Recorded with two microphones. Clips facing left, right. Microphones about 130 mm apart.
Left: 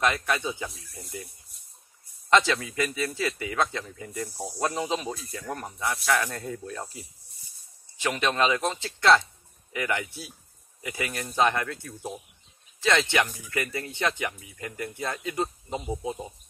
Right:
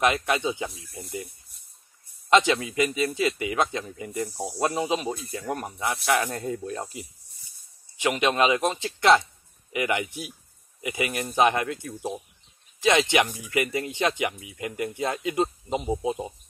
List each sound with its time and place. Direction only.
0.0 s a man's voice: 20° right (ahead or behind)